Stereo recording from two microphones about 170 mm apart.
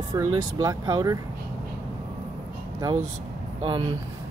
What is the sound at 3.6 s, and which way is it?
Speech, 25° right (ahead or behind).